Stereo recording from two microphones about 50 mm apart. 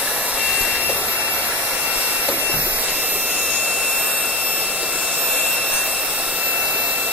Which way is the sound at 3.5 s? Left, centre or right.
Right.